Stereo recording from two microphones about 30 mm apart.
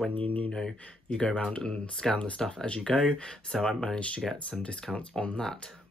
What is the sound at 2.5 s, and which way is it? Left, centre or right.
Speech, left.